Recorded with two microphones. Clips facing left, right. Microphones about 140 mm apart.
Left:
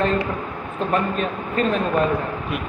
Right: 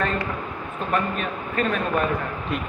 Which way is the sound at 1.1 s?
30° left (ahead or behind).